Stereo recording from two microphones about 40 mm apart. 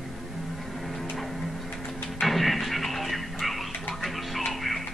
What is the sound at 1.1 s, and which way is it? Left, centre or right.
Music, centre.